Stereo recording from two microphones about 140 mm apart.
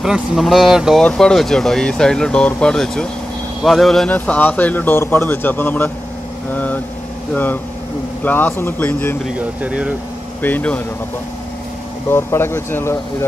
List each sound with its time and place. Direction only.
0.0 s speech: centre (ahead or behind)
8.2 s speech: 10° left (ahead or behind)
9.6 s speech: 10° right (ahead or behind)
10.4 s speech: 10° left (ahead or behind)
12.1 s speech: 15° left (ahead or behind)